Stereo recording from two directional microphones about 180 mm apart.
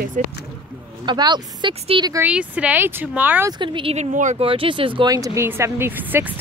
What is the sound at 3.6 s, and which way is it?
Speech, 30° right (ahead or behind).